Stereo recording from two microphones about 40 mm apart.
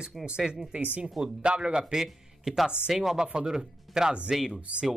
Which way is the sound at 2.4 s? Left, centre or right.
Centre.